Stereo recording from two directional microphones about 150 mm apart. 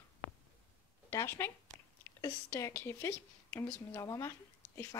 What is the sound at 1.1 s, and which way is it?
Speech, 15° left (ahead or behind).